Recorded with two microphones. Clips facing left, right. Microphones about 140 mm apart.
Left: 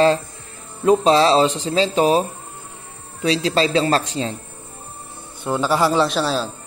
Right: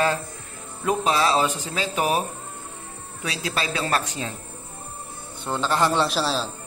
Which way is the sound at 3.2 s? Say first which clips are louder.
Left 10 dB; 30° left (ahead or behind).